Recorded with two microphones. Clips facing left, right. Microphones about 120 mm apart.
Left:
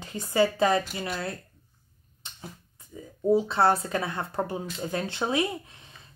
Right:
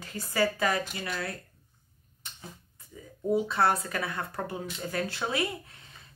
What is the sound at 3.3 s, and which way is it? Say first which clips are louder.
Speech: left 4 dB; 30° left (ahead or behind).